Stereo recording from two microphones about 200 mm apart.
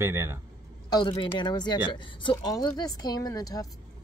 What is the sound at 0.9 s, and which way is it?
A woman's voice, 25° left (ahead or behind).